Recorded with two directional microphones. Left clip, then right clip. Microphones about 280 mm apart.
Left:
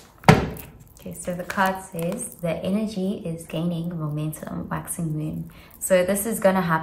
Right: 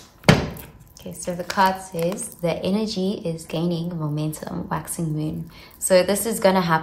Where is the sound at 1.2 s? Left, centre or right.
Centre.